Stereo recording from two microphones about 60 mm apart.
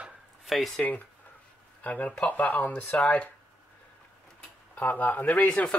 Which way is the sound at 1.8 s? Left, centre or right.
Left.